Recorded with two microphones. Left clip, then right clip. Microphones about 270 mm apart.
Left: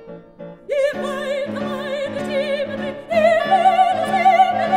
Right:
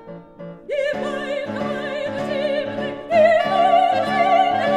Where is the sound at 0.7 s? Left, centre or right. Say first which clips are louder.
Left 2 dB; left.